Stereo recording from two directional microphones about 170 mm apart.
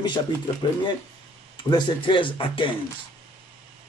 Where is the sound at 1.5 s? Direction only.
30° left (ahead or behind).